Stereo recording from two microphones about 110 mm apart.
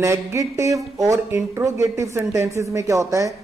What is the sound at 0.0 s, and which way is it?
Speech, 25° right (ahead or behind).